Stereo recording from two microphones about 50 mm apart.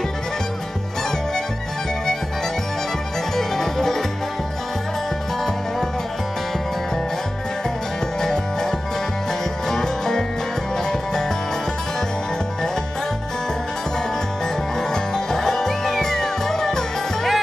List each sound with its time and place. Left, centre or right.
3.3 s music: centre
9.7 s music: centre
15.1 s music: centre